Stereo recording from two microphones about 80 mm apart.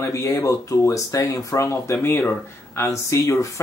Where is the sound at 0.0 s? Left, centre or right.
Left.